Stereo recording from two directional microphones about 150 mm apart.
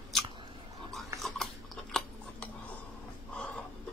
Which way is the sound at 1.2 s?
Centre (ahead or behind).